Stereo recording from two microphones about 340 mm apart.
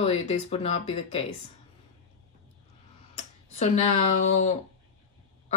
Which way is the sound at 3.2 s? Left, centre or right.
Centre.